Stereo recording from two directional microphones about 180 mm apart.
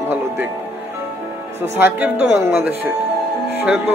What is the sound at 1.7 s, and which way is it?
Speech, 10° right (ahead or behind).